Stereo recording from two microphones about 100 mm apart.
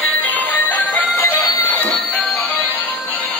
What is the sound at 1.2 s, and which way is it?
Music, 30° left (ahead or behind).